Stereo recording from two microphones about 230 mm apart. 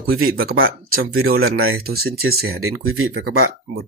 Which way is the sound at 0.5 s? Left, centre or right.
Right.